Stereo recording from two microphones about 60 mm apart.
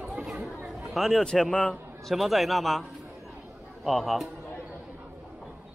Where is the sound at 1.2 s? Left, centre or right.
Centre.